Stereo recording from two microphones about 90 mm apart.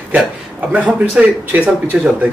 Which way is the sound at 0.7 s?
20° right (ahead or behind).